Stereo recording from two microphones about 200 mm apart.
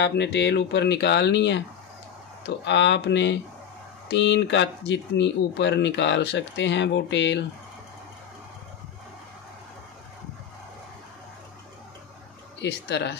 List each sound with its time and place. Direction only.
0.0 s speech: 60° left (ahead or behind)
12.6 s speech: 60° left (ahead or behind)